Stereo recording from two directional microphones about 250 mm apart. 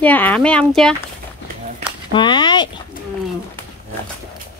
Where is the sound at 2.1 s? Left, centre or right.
Centre.